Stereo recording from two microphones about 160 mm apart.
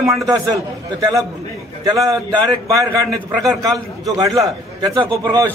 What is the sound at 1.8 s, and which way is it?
Speech, 20° right (ahead or behind).